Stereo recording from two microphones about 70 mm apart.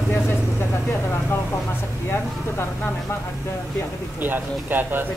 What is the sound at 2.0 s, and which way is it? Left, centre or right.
A woman's voice, left.